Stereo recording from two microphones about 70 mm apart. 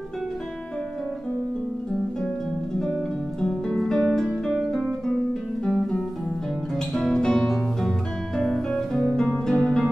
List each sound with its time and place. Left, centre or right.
2.8 s music: centre
6.9 s music: centre